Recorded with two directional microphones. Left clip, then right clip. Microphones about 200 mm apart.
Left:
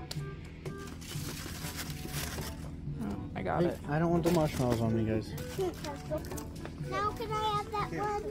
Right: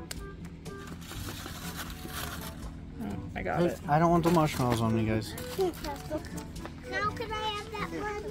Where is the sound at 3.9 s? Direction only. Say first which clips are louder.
Right 7 dB; 55° right (ahead or behind).